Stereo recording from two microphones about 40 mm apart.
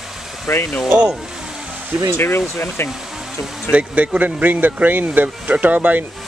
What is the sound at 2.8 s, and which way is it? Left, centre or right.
Speech, left.